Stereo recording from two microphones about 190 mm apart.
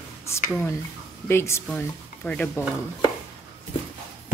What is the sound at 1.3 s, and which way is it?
Speech, 15° left (ahead or behind).